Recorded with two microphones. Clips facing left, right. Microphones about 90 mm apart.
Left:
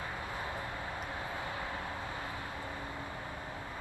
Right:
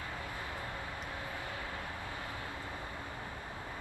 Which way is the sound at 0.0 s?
25° left (ahead or behind).